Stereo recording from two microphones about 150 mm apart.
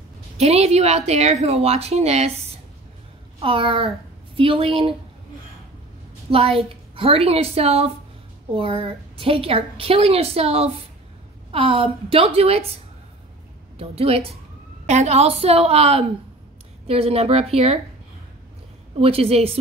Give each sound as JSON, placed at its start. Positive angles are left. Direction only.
{"t": 0.4, "sound": "a woman's voice", "side_deg": -45}
{"t": 6.3, "sound": "a woman's voice", "side_deg": -40}
{"t": 13.7, "sound": "a woman's voice", "side_deg": -40}
{"t": 18.9, "sound": "a woman's voice", "side_deg": -40}